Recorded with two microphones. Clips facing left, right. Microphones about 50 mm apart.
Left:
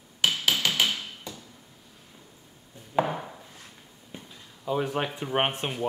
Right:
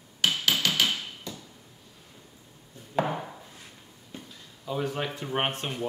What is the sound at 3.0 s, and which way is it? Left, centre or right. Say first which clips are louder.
Chopping: left 2 dB; centre.